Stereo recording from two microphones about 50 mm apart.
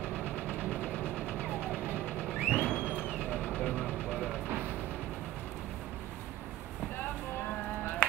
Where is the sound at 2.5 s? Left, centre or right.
Left.